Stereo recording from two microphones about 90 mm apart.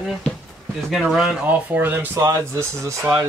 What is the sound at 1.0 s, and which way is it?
Speech, 5° right (ahead or behind).